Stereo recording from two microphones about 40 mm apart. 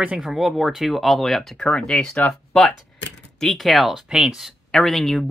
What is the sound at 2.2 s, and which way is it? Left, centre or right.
Speech, left.